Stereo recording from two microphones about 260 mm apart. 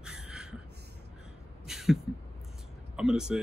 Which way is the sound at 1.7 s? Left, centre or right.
Centre.